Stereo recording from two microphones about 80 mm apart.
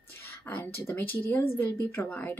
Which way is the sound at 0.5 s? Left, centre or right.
Left.